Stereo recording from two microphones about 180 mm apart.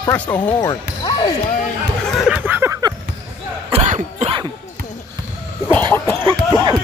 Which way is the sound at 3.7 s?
40° right (ahead or behind).